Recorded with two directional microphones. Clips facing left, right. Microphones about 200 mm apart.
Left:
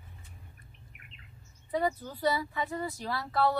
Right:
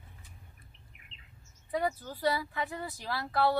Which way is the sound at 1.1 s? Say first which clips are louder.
Left 4 dB; 55° left (ahead or behind).